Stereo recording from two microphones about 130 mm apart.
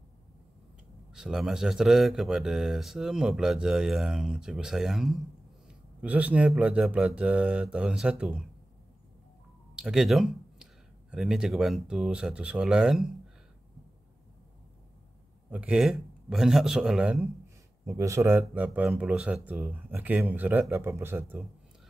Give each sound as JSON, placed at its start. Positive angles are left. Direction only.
{"t": 1.1, "sound": "speech", "side_deg": -5}
{"t": 9.8, "sound": "speech", "side_deg": -5}
{"t": 15.5, "sound": "speech", "side_deg": -10}
{"t": 17.8, "sound": "speech", "side_deg": -20}